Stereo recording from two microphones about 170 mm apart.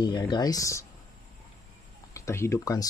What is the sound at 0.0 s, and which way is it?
Speech, 25° left (ahead or behind).